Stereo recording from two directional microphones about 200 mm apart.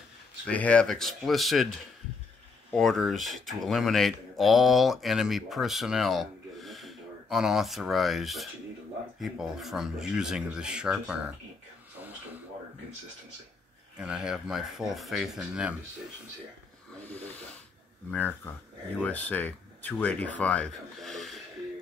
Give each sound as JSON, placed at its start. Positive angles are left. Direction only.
{"t": 0.5, "sound": "speech", "side_deg": 5}
{"t": 13.9, "sound": "speech", "side_deg": -5}
{"t": 16.9, "sound": "snoring", "side_deg": 5}
{"t": 18.1, "sound": "speech", "side_deg": 10}